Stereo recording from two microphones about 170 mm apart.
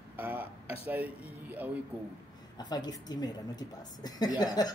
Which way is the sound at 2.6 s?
25° left (ahead or behind).